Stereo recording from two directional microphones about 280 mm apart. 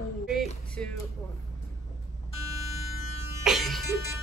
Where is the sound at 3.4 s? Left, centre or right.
Centre.